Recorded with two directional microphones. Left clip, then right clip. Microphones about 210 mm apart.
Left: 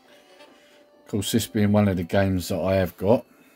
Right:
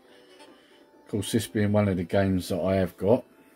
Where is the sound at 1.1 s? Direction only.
50° left (ahead or behind).